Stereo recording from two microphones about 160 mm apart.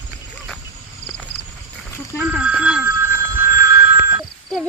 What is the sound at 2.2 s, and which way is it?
Telephone bell ringing, 10° right (ahead or behind).